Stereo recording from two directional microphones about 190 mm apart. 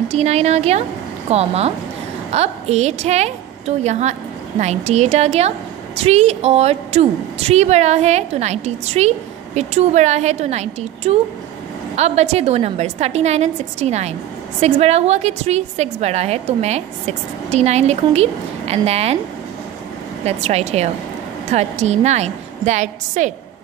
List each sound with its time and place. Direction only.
0.1 s a woman's voice: 35° right (ahead or behind)
20.2 s a woman's voice: 35° right (ahead or behind)